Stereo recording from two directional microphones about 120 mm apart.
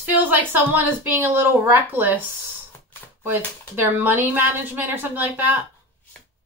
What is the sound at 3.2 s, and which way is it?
A woman's voice, 20° right (ahead or behind).